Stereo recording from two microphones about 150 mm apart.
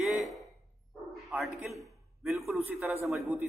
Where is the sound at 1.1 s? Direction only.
Centre (ahead or behind).